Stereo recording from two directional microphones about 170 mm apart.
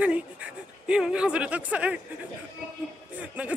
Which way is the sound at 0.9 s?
5° right (ahead or behind).